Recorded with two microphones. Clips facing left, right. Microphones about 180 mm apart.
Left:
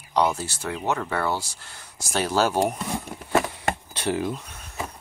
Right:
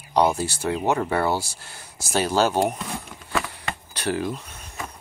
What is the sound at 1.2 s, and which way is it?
Speech, 10° right (ahead or behind).